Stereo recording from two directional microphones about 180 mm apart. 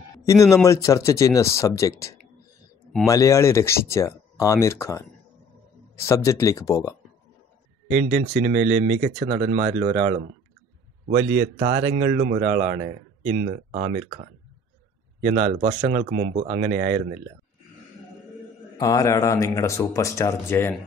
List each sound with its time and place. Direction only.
0.2 s speech: 15° left (ahead or behind)
6.0 s speech: 15° left (ahead or behind)
7.9 s speech: 50° right (ahead or behind)
11.1 s speech: 75° right (ahead or behind)
11.5 s speech: 50° right (ahead or behind)
11.9 s speech: 70° right (ahead or behind)
12.2 s speech: 40° right (ahead or behind)
15.3 s speech: 40° right (ahead or behind)
16.0 s speech: 55° right (ahead or behind)
18.8 s speech: 20° left (ahead or behind)